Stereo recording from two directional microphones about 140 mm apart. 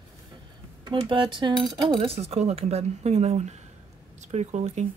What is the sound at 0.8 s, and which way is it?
Speech, 35° right (ahead or behind).